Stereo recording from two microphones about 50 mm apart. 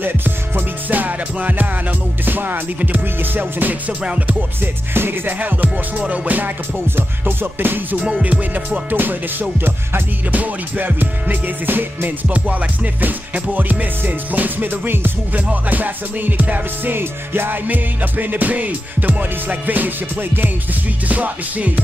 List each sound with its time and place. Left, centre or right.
0.8 s music: right
4.9 s music: right
5.4 s music: right
8.0 s music: right
8.9 s music: right
16.9 s music: right
21.1 s music: right